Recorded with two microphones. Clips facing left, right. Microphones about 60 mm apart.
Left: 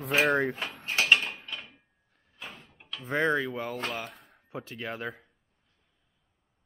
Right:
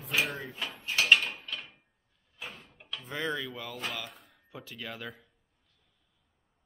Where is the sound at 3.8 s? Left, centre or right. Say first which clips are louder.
Left 3 dB; left.